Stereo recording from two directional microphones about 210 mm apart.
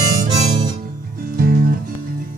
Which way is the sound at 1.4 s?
45° right (ahead or behind).